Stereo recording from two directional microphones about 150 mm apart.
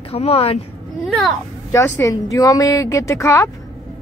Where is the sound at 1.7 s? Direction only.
15° left (ahead or behind).